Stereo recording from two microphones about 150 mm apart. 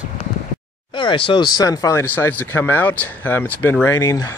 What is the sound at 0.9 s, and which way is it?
Speech, 35° left (ahead or behind).